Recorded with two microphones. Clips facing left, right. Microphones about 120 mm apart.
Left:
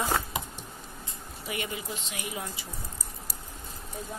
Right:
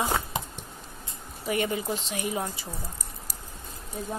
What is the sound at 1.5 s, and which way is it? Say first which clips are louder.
Speech: right 8 dB; 40° right (ahead or behind).